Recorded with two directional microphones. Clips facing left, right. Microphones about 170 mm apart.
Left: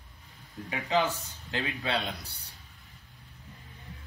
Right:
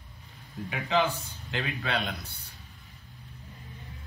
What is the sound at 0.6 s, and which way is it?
Speech, 40° left (ahead or behind).